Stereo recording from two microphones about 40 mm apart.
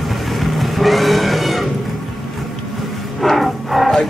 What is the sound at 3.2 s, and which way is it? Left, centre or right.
Music, centre.